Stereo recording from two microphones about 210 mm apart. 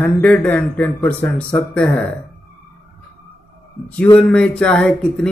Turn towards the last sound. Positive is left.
turn(degrees=5)  # may be behind; listen again after turning